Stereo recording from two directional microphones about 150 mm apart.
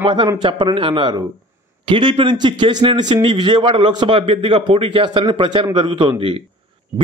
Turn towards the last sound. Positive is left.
turn(degrees=-35)  # may be behind; listen again after turning